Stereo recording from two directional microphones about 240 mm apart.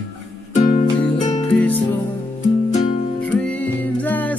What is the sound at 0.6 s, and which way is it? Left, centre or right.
Music, left.